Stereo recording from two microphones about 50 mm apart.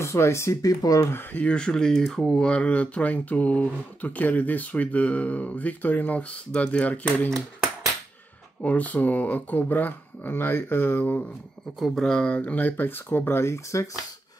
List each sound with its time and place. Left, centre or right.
0.0 s speech: left
1.5 s speech: centre
2.3 s speech: left
8.6 s speech: left
12.0 s speech: centre
12.3 s speech: left